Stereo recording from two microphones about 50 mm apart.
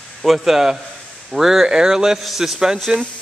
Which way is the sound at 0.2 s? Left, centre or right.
Centre.